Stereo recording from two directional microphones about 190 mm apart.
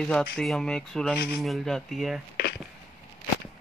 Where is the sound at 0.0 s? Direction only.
5° left (ahead or behind).